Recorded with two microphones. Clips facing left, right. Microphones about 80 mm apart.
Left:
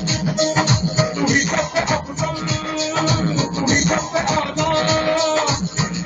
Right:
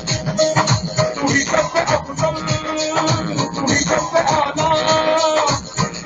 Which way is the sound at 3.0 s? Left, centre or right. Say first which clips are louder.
Even; right.